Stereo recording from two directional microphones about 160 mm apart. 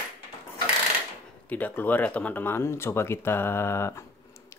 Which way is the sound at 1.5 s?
10° left (ahead or behind).